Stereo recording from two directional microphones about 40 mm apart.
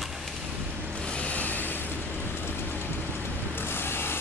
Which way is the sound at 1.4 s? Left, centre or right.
Left.